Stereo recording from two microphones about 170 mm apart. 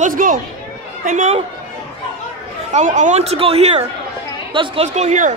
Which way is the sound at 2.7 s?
45° right (ahead or behind).